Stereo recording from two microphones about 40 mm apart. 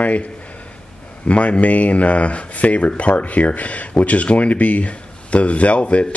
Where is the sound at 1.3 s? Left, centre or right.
Left.